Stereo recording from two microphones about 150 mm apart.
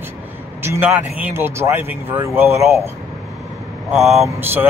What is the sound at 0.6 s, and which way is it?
A man's voice, 15° right (ahead or behind).